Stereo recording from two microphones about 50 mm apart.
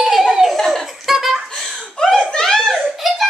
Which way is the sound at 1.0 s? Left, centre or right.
Centre.